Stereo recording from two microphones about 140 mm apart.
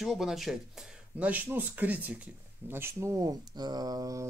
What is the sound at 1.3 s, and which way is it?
Speech, 15° right (ahead or behind).